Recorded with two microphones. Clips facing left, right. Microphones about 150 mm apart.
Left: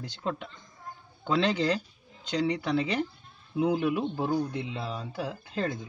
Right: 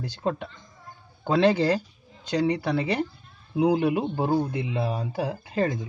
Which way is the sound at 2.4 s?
60° right (ahead or behind).